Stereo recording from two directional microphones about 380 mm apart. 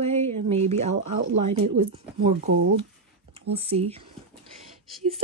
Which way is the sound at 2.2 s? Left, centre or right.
Centre.